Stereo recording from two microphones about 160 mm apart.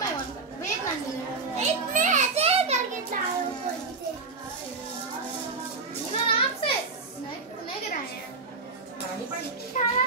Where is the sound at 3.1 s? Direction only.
55° right (ahead or behind).